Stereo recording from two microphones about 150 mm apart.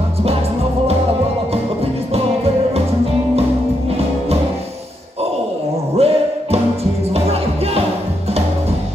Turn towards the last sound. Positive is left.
turn(degrees=-40)  # may be behind; listen again after turning